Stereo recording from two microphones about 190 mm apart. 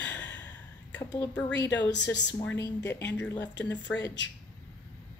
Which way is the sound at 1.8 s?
65° left (ahead or behind).